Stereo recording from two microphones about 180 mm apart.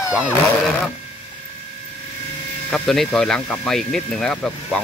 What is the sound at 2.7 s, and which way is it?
Speech, 5° left (ahead or behind).